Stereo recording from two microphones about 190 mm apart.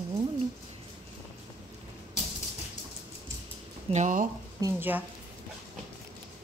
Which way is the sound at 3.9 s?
40° right (ahead or behind).